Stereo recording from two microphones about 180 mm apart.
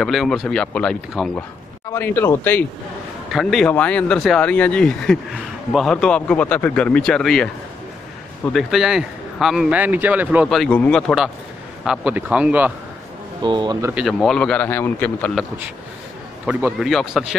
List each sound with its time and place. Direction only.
0.0 s speech: centre (ahead or behind)
1.9 s a man's voice: 15° left (ahead or behind)
3.3 s speech: centre (ahead or behind)
8.5 s a man's voice: centre (ahead or behind)
13.4 s speech: 25° right (ahead or behind)
13.9 s a man's voice: centre (ahead or behind)
16.4 s speech: 5° right (ahead or behind)